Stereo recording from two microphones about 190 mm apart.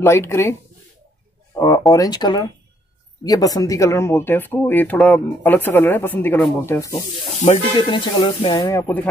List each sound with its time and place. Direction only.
0.0 s speech: 15° left (ahead or behind)
7.4 s speech: 25° left (ahead or behind); by 9.1 s 10° left (ahead or behind)